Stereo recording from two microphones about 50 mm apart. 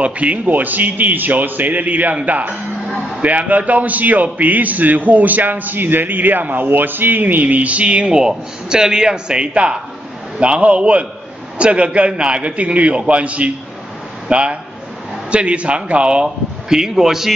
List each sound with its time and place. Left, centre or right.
0.0 s a man's voice: right
0.5 s a man's voice: right; by 17.3 s centre